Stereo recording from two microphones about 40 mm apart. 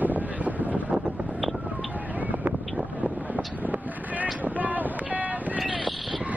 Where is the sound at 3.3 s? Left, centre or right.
Right.